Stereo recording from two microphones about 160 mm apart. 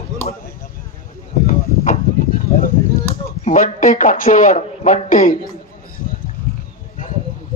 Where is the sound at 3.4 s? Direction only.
50° left (ahead or behind).